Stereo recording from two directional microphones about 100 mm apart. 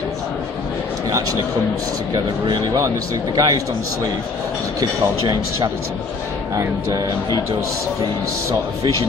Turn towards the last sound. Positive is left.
turn(degrees=-40)  # may be behind; listen again after turning